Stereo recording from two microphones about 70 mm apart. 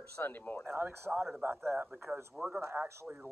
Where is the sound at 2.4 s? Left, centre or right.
Centre.